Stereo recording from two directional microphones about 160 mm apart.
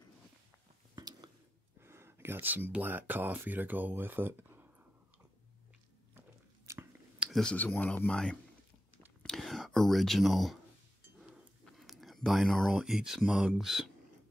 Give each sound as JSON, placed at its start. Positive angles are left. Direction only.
{"t": 0.9, "sound": "a sound", "side_deg": -25}
{"t": 1.8, "sound": "speech", "side_deg": -15}
{"t": 6.1, "sound": "biting", "side_deg": -20}
{"t": 7.2, "sound": "speech", "side_deg": 0}
{"t": 9.2, "sound": "a sound", "side_deg": 5}
{"t": 11.7, "sound": "speech", "side_deg": 0}